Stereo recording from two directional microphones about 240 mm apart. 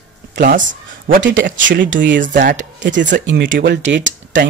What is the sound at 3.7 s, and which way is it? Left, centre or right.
Speech, right.